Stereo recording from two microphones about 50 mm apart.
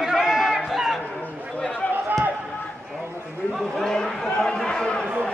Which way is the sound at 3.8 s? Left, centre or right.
Centre.